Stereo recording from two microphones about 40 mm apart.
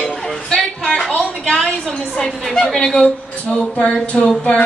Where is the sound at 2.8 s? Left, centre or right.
Centre.